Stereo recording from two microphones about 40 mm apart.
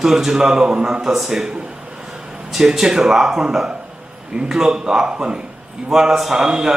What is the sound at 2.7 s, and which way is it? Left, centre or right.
A man's voice, centre.